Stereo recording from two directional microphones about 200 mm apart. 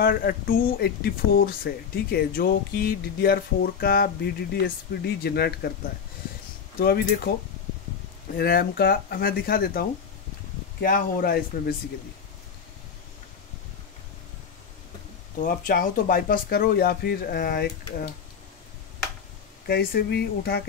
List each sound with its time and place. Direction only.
0.0 s speech: 50° left (ahead or behind)
6.8 s speech: 50° left (ahead or behind)
8.4 s speech: 50° left (ahead or behind)
15.3 s speech: 45° left (ahead or behind)
19.7 s speech: 50° left (ahead or behind)